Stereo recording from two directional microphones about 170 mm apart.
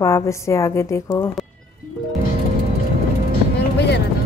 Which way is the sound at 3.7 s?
85° left.